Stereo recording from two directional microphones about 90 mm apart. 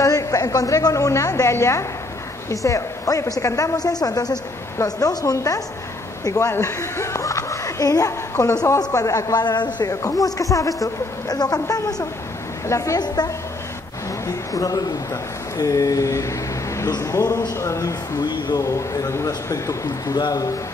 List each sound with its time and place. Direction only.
0.0 s a woman's voice: 40° left (ahead or behind)
9.4 s a woman's voice: 55° left (ahead or behind); by 13.0 s 35° left (ahead or behind)
13.0 s a woman's voice: 50° left (ahead or behind)
18.2 s speech: 55° left (ahead or behind)
18.6 s a woman's voice: 35° left (ahead or behind)